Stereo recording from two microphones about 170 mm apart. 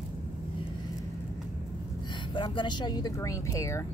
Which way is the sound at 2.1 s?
30° left (ahead or behind).